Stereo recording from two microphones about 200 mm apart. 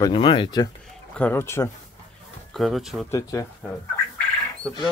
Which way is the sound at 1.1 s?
10° left (ahead or behind).